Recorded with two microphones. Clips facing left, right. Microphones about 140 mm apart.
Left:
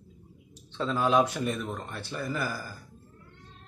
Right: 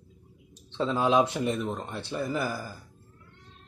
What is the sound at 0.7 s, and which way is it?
Speech, 25° right (ahead or behind).